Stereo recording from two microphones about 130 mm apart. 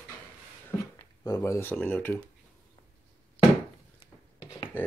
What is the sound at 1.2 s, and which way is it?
Speech, 25° left (ahead or behind).